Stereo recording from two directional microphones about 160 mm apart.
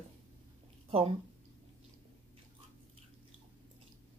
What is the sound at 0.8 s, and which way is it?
Speech, 40° right (ahead or behind).